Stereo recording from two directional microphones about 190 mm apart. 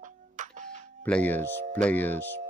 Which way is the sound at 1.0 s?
5° left (ahead or behind).